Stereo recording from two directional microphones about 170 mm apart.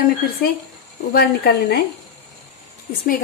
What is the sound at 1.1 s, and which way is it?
Speech, 65° left (ahead or behind).